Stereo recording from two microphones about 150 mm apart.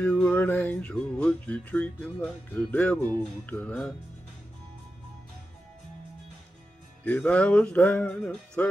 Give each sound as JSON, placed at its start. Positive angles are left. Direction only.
{"t": 0.0, "sound": "music", "side_deg": 10}
{"t": 7.1, "sound": "music", "side_deg": 10}